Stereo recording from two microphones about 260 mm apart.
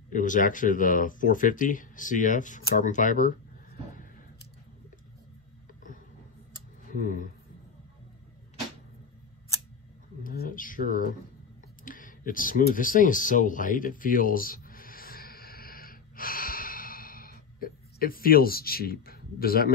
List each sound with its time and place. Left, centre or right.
0.1 s speech: left
6.9 s speech: left
10.2 s speech: left
11.8 s a sound: left